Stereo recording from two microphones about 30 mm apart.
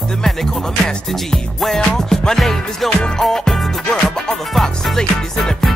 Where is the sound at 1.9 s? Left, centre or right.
Centre.